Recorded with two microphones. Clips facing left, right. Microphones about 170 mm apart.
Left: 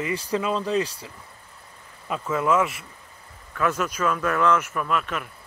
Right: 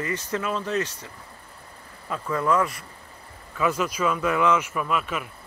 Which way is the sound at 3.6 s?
10° right (ahead or behind).